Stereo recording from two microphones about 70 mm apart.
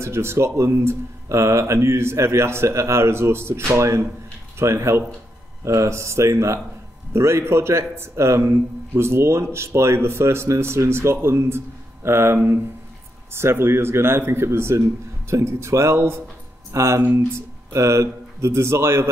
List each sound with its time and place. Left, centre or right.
0.0 s a man's voice: right